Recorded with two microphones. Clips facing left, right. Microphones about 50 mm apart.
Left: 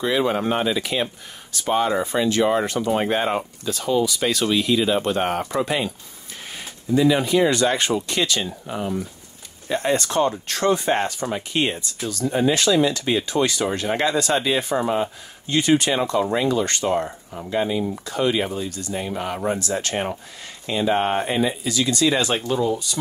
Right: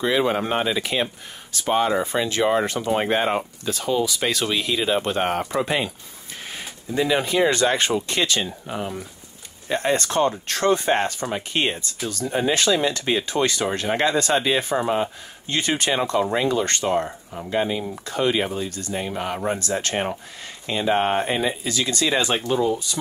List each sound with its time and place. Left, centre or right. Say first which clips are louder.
0.0 s speech: even; right
8.6 s speech: left 2 dB; right
9.7 s speech: even; right